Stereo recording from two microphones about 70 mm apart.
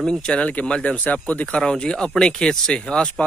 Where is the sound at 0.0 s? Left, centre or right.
Centre.